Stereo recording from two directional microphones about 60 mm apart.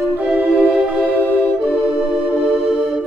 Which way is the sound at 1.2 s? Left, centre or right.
Left.